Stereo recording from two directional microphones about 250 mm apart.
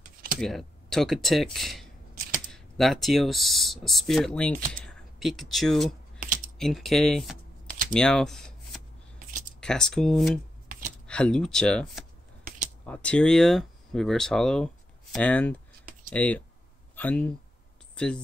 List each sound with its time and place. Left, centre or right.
0.4 s speech: centre
6.1 s typing: right
6.6 s speech: centre
7.9 s a sound: centre
9.6 s speech: centre